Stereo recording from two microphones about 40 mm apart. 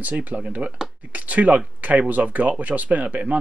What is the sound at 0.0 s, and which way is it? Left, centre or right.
Speech, right.